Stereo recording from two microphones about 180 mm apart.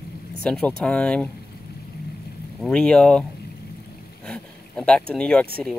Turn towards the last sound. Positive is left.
turn(degrees=5)  # may be behind; listen again after turning